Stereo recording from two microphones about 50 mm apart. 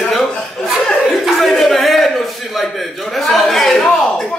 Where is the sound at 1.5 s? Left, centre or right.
Centre.